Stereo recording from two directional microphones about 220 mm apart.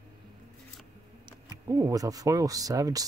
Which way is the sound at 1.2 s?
15° right (ahead or behind).